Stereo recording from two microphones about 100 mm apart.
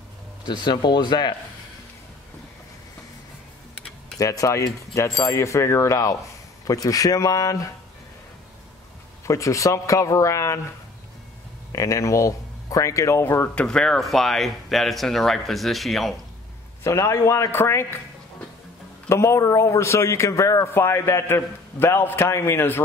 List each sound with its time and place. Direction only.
0.5 s speech: 50° left (ahead or behind)
4.2 s speech: 35° left (ahead or behind)
9.2 s speech: 30° left (ahead or behind)
11.7 s speech: 30° left (ahead or behind)
13.6 s speech: 5° left (ahead or behind)
16.8 s a man's voice: 30° left (ahead or behind)
19.0 s a man's voice: 30° left (ahead or behind)